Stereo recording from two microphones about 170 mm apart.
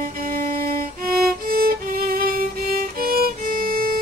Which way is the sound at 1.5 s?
60° right (ahead or behind).